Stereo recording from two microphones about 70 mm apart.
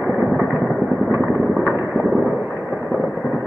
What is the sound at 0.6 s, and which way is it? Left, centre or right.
Vehicle, left.